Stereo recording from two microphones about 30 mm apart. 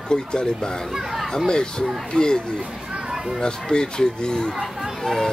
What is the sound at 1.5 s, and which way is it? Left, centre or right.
Speech, left.